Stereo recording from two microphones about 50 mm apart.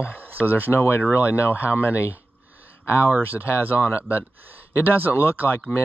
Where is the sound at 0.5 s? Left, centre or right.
Right.